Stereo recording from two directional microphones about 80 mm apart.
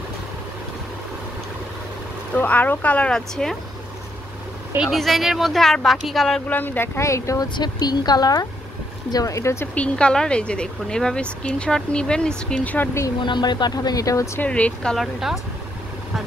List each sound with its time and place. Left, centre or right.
2.3 s speech: centre
4.7 s speech: centre
6.5 s speech: left
7.4 s speech: left
9.8 s speech: centre
13.2 s speech: left
14.4 s speech: centre
15.1 s speech: centre